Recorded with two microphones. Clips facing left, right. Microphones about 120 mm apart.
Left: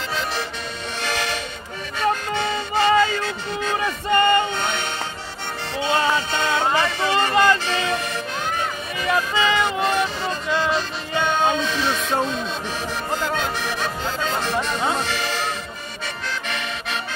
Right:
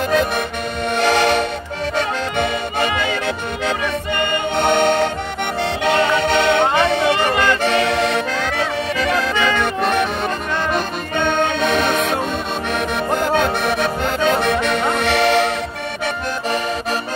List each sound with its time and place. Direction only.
0.9 s music: 65° right (ahead or behind)